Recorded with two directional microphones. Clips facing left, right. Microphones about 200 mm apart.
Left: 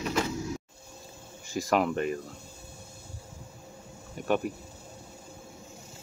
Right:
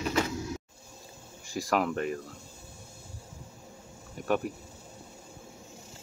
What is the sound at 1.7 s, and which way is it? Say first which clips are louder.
Speech: left 2 dB; 5° left (ahead or behind).